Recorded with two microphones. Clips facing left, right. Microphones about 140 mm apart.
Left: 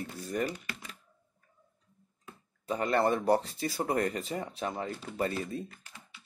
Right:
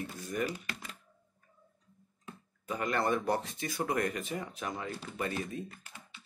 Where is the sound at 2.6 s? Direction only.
35° left (ahead or behind).